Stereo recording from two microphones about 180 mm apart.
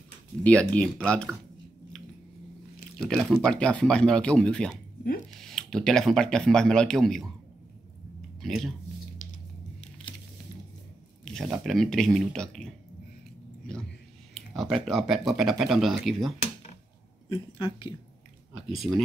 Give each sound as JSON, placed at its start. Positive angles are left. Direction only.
{"t": 0.4, "sound": "speech", "side_deg": 5}
{"t": 3.2, "sound": "speech", "side_deg": 5}
{"t": 8.4, "sound": "speech", "side_deg": 0}
{"t": 11.2, "sound": "speech", "side_deg": 0}
{"t": 14.3, "sound": "a sound", "side_deg": 0}
{"t": 14.9, "sound": "speech", "side_deg": 0}
{"t": 17.3, "sound": "a woman's voice", "side_deg": 25}
{"t": 18.9, "sound": "speech", "side_deg": 0}